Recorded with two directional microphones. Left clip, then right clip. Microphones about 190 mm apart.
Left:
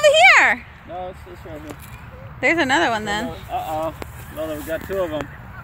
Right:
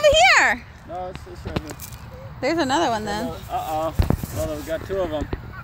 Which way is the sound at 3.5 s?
30° left (ahead or behind).